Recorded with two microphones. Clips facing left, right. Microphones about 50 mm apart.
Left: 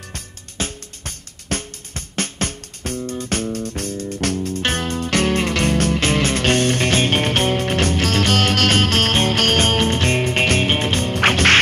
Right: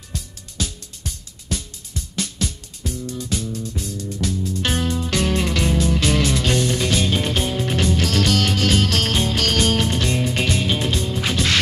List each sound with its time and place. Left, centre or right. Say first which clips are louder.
0.1 s music: right 2 dB; left